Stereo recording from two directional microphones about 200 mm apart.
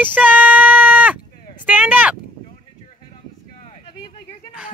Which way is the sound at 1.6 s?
10° right (ahead or behind).